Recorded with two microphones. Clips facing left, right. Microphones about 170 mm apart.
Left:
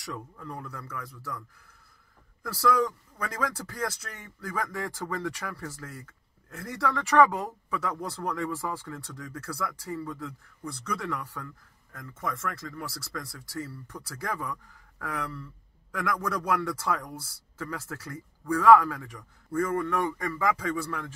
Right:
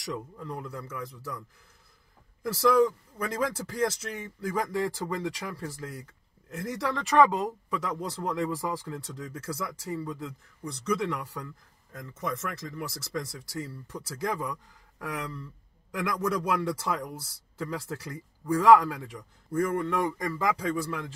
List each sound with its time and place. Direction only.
0.1 s speech: 20° right (ahead or behind)
3.2 s speech: 20° right (ahead or behind)